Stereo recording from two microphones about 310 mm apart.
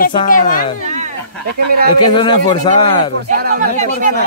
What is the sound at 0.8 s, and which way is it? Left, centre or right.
Speech, right.